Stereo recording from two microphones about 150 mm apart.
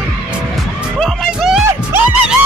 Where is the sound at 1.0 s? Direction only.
Centre (ahead or behind).